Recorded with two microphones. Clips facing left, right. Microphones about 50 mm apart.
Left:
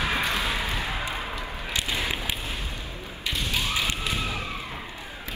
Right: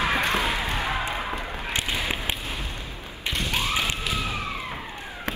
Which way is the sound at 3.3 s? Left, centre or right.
Right.